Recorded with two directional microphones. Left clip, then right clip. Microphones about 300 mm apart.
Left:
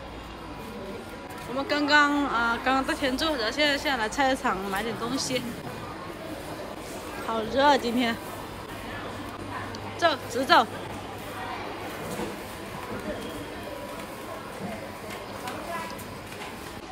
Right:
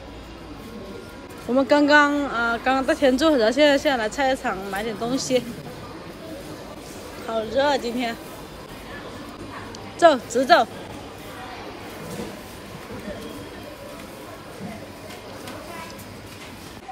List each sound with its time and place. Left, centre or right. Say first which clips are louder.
1.6 s speech: right 6 dB; centre
7.3 s speech: right 1 dB; centre
9.9 s speech: right 9 dB; centre